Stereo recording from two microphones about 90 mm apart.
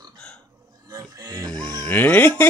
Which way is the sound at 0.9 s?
45° right (ahead or behind).